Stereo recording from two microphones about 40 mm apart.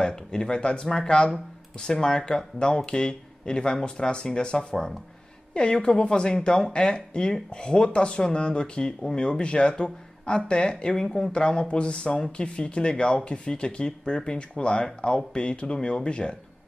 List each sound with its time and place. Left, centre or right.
0.0 s speech: centre
11.1 s speech: centre
11.3 s speech: left